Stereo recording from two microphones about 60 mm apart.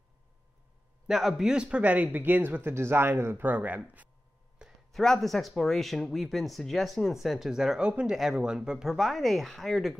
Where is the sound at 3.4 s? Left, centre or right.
Right.